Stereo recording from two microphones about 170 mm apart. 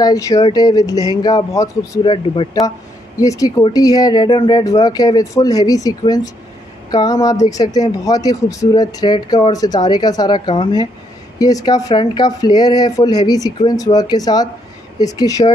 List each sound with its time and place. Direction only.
0.0 s speech: 20° left (ahead or behind)